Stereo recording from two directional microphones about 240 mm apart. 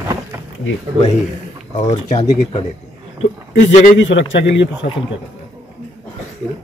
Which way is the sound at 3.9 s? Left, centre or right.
Left.